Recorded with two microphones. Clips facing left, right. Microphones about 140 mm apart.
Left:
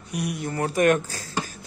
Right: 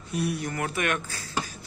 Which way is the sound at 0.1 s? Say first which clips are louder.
Even; 15° left (ahead or behind).